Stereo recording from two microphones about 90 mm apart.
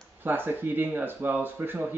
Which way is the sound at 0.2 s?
25° right (ahead or behind).